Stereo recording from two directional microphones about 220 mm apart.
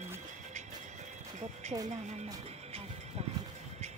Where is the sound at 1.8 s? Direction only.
30° right (ahead or behind).